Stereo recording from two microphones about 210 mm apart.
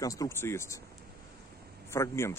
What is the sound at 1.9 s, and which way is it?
Speech, 15° left (ahead or behind).